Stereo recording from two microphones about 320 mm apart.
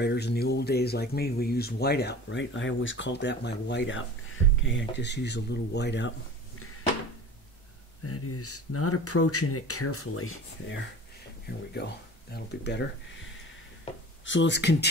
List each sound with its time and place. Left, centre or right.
0.0 s speech: left
8.0 s speech: left
12.3 s speech: left
14.2 s speech: left